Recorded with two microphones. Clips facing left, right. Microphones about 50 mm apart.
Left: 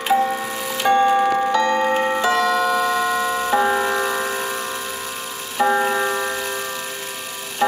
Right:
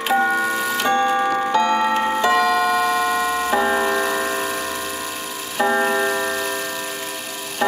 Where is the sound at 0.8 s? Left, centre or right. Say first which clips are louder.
Left 4 dB; centre.